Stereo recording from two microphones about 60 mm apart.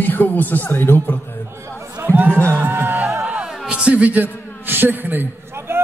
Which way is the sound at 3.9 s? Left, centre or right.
Right.